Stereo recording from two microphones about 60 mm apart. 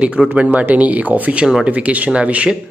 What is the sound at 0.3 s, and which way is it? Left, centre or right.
Speech, right.